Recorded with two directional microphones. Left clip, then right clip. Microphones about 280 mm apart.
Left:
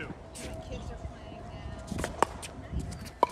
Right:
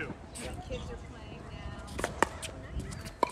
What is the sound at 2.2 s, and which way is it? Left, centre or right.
Chop, centre.